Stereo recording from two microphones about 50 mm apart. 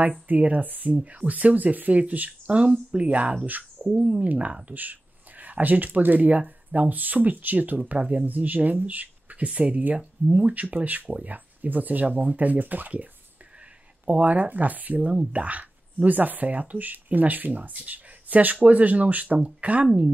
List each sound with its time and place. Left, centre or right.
0.3 s speech: right
3.4 s speech: right
3.9 s speech: centre; by 7.8 s right
8.0 s speech: centre
8.3 s speech: right
9.5 s speech: right
10.5 s speech: right